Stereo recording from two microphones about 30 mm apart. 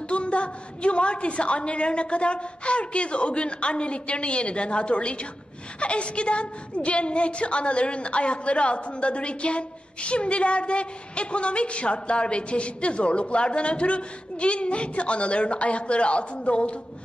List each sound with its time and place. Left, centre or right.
0.1 s a woman's voice: left